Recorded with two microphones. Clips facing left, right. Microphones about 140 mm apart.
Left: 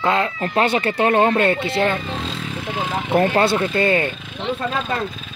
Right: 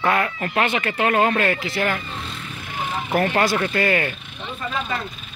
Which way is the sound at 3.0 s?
25° left (ahead or behind).